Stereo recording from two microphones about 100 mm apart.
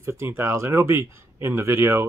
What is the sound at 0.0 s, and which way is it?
Speech, 25° right (ahead or behind).